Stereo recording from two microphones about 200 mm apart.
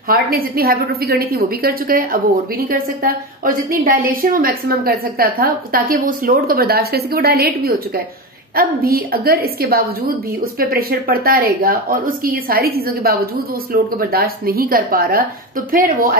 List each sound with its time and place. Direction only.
0.1 s a woman's voice: 50° right (ahead or behind)